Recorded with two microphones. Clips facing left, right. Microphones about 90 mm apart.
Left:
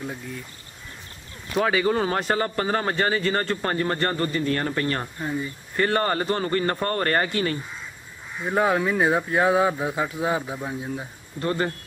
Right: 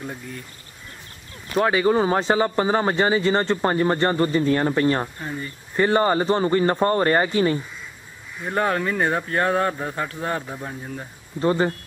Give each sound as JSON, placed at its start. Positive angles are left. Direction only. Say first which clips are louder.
{"t": 0.0, "sound": "speech", "louder": "even", "side_deg": 0}
{"t": 1.7, "sound": "speech", "louder": "right 4 dB", "side_deg": -20}
{"t": 8.5, "sound": "speech", "louder": "left 1 dB", "side_deg": 5}
{"t": 11.4, "sound": "speech", "louder": "right 5 dB", "side_deg": -20}